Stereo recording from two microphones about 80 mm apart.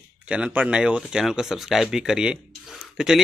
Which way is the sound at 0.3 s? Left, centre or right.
Centre.